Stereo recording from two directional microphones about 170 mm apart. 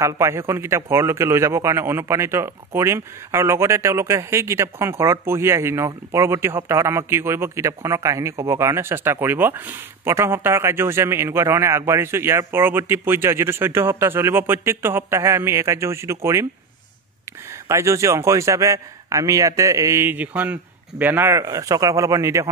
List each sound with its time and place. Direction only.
0.0 s speech: 15° right (ahead or behind)
17.6 s speech: 15° right (ahead or behind)